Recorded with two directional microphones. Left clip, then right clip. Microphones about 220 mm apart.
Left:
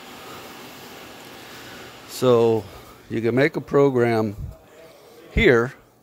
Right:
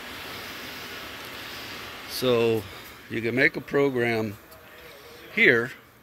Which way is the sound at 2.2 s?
25° left (ahead or behind).